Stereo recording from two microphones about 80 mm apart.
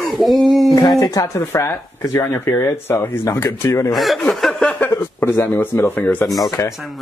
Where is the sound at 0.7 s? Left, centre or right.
Left.